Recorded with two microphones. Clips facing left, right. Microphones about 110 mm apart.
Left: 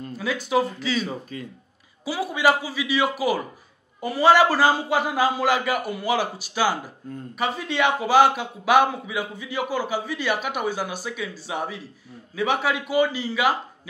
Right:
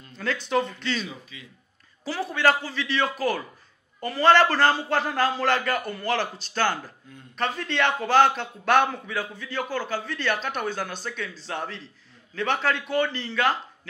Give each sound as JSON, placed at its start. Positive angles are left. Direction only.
{"t": 0.1, "sound": "speech", "side_deg": 10}
{"t": 1.0, "sound": "speech", "side_deg": 45}
{"t": 2.0, "sound": "a man's voice", "side_deg": 10}